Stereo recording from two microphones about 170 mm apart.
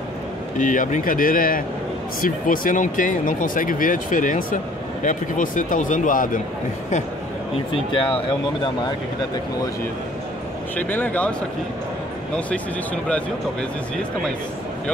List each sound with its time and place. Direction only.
0.6 s speech: 50° left (ahead or behind)
7.5 s speech: 30° left (ahead or behind)
10.8 s speech: 10° left (ahead or behind)